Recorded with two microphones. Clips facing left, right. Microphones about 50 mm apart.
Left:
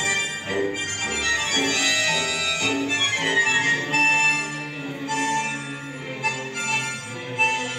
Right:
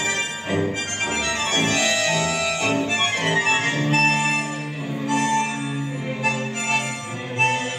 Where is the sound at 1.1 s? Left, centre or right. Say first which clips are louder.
Left 2 dB; centre.